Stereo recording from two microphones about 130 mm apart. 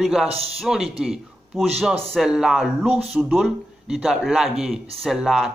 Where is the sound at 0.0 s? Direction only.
Centre (ahead or behind).